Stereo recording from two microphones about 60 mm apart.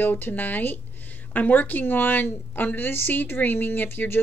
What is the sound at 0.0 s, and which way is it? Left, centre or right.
A woman's voice, left.